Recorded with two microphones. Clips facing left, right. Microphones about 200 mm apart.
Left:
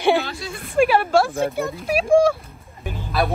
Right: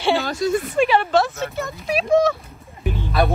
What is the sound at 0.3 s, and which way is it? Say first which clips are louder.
Speech: right 12 dB; 45° right (ahead or behind).